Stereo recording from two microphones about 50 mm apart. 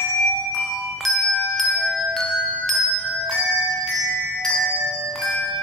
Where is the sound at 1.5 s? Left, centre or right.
Centre.